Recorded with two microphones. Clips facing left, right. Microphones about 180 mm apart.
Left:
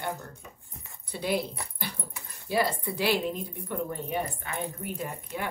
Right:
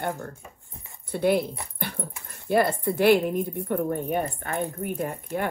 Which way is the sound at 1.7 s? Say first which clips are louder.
Right 5 dB; 55° right (ahead or behind).